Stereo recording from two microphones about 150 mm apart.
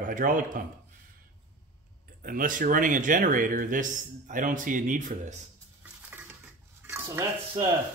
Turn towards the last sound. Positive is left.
turn(degrees=-15)  # may be behind; listen again after turning